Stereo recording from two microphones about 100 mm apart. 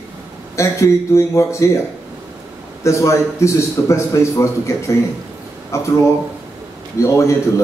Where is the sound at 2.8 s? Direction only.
30° left (ahead or behind).